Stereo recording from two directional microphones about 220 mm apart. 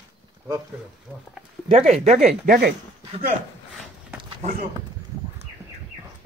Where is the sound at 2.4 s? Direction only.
45° right (ahead or behind).